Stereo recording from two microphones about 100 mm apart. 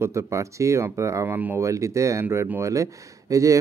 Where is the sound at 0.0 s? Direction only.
30° right (ahead or behind).